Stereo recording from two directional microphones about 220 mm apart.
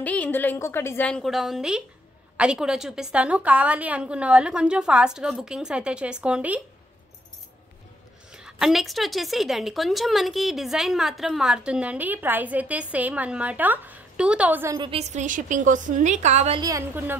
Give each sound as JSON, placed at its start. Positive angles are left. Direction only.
{"t": 0.0, "sound": "a woman's voice", "side_deg": 5}
{"t": 8.3, "sound": "a woman's voice", "side_deg": -5}
{"t": 14.8, "sound": "a woman's voice", "side_deg": -25}
{"t": 16.6, "sound": "a woman's voice", "side_deg": -10}